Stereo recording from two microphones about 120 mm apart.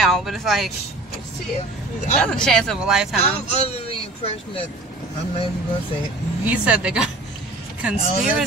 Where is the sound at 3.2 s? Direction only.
60° left (ahead or behind).